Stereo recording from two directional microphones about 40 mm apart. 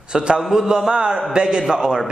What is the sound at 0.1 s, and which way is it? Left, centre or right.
A man's voice, centre.